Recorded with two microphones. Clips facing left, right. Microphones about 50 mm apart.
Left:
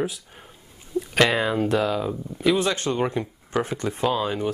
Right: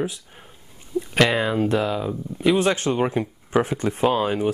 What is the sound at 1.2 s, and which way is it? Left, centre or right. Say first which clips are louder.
Speech: right 1 dB; centre.